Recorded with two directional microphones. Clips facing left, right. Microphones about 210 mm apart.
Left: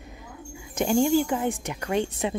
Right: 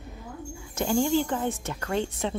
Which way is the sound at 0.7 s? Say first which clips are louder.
Left 3 dB; 15° left (ahead or behind).